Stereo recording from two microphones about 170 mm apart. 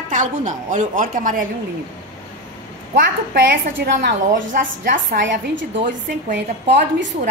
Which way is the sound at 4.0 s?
90° right.